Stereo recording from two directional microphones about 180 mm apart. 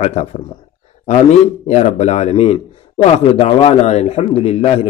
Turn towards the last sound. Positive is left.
turn(degrees=35)  # may be behind; listen again after turning